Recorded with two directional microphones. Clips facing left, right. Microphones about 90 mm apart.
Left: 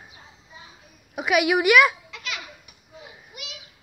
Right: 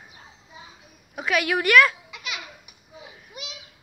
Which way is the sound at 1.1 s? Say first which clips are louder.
Left 3 dB; 10° left (ahead or behind).